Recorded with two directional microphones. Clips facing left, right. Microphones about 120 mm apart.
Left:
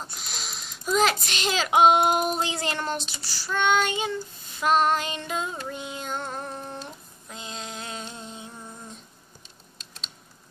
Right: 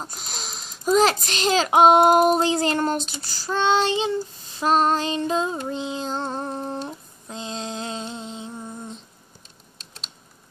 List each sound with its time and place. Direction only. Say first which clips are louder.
0.0 s a child's voice: right 3 dB; 40° right (ahead or behind)
3.5 s child singing: right 3 dB; 30° right (ahead or behind)